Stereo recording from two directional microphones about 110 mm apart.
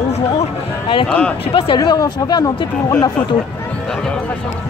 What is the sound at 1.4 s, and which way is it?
Speech, 50° left (ahead or behind).